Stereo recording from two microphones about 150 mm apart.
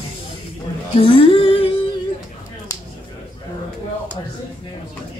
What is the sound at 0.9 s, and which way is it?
Speech, 35° left (ahead or behind).